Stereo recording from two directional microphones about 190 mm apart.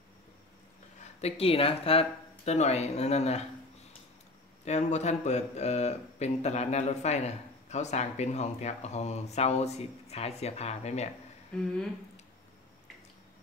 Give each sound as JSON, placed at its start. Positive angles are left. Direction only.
{"t": 1.2, "sound": "a man's voice", "side_deg": 30}
{"t": 4.6, "sound": "a man's voice", "side_deg": 35}
{"t": 11.5, "sound": "speech", "side_deg": 5}